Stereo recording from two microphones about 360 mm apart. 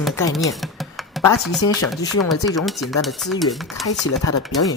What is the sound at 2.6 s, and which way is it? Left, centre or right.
Speech, centre.